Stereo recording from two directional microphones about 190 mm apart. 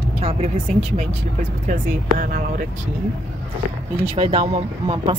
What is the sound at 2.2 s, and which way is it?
Speech, 50° right (ahead or behind).